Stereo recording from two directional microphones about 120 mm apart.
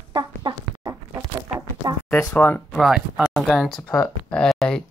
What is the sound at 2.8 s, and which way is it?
Speech, 5° right (ahead or behind).